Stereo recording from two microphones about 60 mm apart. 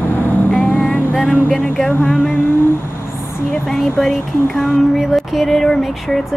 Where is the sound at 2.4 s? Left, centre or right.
Left.